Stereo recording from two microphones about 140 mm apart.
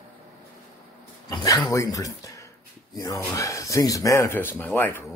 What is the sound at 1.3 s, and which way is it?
A man's voice, 25° left (ahead or behind).